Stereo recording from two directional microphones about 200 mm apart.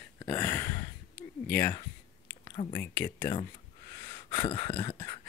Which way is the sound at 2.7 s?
10° left (ahead or behind).